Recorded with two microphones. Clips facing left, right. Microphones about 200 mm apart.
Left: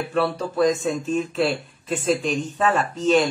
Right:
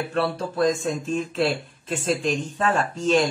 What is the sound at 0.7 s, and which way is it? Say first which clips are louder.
Speech: left 2 dB; centre (ahead or behind).